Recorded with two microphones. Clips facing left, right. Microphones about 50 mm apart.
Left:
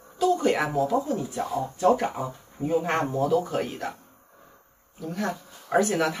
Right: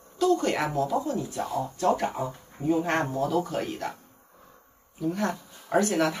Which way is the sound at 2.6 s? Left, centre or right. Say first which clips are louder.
Right 2 dB; right.